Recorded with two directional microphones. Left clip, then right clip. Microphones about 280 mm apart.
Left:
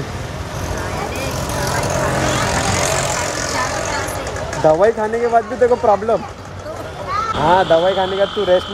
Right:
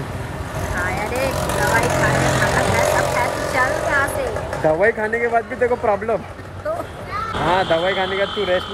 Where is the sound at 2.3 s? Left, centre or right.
Right.